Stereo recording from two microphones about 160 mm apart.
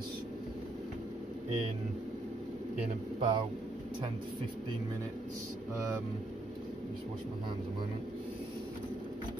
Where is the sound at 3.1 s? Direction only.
35° right (ahead or behind).